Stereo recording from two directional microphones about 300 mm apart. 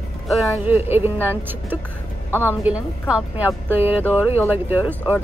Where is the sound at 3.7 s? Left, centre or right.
Centre.